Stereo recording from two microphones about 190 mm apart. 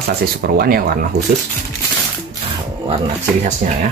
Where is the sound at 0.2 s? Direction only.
50° right (ahead or behind).